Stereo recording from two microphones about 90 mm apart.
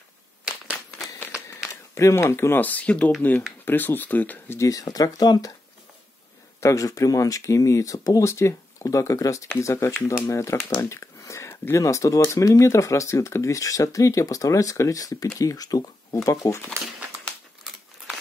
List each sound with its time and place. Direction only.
1.7 s speech: 35° left (ahead or behind)
4.6 s speech: 40° left (ahead or behind)
6.6 s speech: 35° left (ahead or behind)
16.2 s speech: 35° left (ahead or behind)